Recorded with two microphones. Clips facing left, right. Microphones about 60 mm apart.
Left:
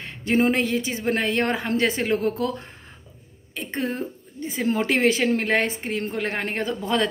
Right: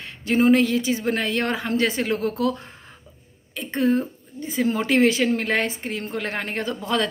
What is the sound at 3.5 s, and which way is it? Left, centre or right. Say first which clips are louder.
A woman's voice: right 6 dB; left.